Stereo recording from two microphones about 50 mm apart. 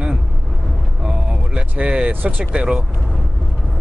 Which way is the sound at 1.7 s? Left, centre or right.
Right.